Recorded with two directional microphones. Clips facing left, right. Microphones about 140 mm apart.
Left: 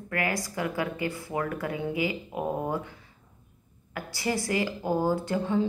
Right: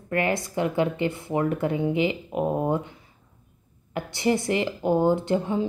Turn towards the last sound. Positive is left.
turn(degrees=-20)  # may be behind; listen again after turning